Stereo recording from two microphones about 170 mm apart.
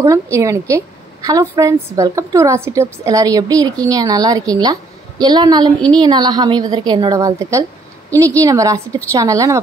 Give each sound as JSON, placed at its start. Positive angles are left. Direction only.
{"t": 0.0, "sound": "a woman's voice", "side_deg": -15}